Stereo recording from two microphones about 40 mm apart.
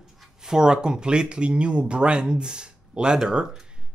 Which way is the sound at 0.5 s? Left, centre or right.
Centre.